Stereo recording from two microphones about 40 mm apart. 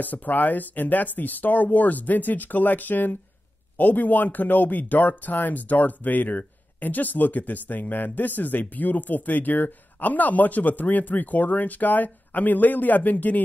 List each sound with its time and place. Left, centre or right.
0.0 s speech: left